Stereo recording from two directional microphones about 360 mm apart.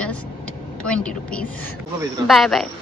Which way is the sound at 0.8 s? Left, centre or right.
Centre.